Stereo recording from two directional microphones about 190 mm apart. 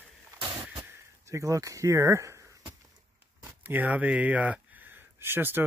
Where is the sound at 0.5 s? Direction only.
10° right (ahead or behind).